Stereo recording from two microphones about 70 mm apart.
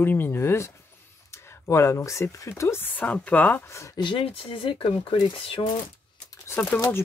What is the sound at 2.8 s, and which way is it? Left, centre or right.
Speech, left.